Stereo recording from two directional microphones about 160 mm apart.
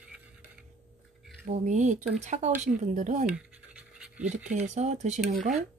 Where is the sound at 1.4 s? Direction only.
50° right (ahead or behind).